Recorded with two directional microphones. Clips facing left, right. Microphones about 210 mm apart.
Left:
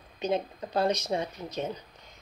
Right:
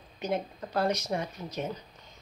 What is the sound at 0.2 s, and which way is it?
Speech, 20° left (ahead or behind).